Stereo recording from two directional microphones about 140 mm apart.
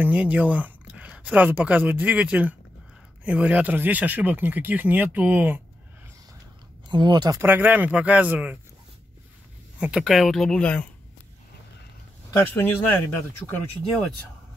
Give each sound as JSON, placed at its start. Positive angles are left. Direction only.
{"t": 0.0, "sound": "speech", "side_deg": -10}
{"t": 6.9, "sound": "speech", "side_deg": -35}
{"t": 7.4, "sound": "speech", "side_deg": -10}
{"t": 9.8, "sound": "speech", "side_deg": -5}
{"t": 12.3, "sound": "speech", "side_deg": 20}